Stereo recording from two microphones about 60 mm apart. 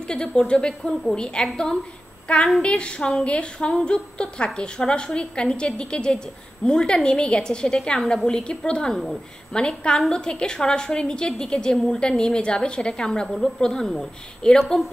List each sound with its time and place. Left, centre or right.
0.0 s a woman's voice: centre